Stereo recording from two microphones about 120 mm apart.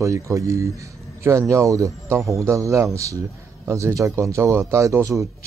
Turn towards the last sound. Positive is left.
turn(degrees=-25)  # may be behind; listen again after turning